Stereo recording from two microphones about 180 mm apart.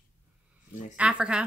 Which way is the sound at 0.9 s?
5° right (ahead or behind).